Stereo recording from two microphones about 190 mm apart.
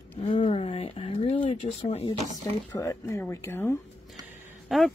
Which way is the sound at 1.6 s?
35° left (ahead or behind).